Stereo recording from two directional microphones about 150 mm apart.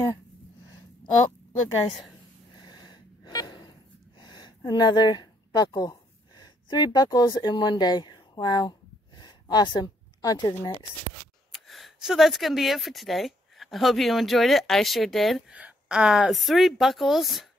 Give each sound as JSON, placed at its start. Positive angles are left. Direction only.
{"t": 2.6, "sound": "snort", "side_deg": 30}
{"t": 4.2, "sound": "a sound", "side_deg": 30}
{"t": 11.5, "sound": "speech", "side_deg": 0}